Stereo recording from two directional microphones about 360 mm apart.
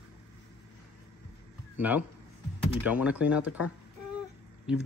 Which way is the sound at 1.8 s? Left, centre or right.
Centre.